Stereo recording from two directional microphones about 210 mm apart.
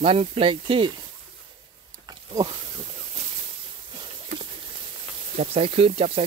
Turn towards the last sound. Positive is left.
turn(degrees=-25)  # may be behind; listen again after turning